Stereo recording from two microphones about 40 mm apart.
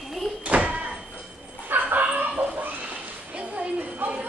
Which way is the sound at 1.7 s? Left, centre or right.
Right.